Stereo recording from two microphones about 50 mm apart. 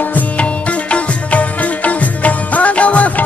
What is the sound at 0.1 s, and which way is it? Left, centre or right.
Music, left.